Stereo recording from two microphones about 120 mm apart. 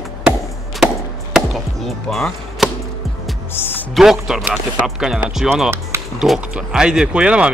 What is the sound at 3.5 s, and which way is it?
Speech, 20° left (ahead or behind).